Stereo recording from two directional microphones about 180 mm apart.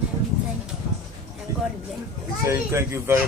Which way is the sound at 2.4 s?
15° right (ahead or behind).